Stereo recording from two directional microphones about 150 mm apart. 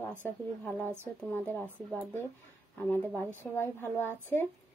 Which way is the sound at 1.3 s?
10° left (ahead or behind).